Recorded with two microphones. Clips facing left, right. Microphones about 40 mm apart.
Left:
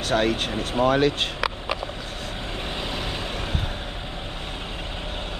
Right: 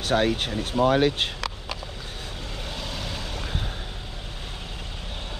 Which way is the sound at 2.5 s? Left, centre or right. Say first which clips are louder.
Left 4 dB; left.